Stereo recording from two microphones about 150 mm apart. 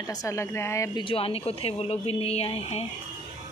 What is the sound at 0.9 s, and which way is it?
Speech, 35° left (ahead or behind).